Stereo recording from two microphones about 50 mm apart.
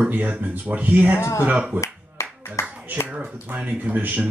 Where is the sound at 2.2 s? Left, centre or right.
Left.